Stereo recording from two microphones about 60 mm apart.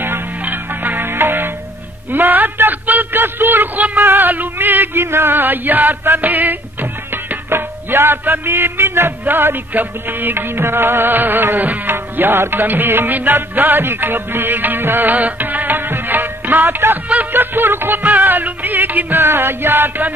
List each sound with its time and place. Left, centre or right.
0.0 s music: right
2.1 s a man's voice: right
4.0 s music: right
16.5 s music: right
17.2 s music: right
19.2 s music: right